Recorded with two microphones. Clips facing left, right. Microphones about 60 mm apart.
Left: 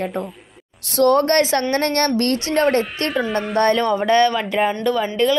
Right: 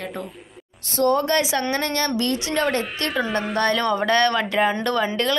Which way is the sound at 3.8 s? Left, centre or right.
Centre.